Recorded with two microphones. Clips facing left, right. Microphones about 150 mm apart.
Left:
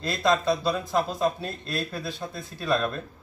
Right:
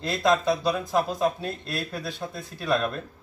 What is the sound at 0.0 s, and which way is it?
Speech, 5° right (ahead or behind).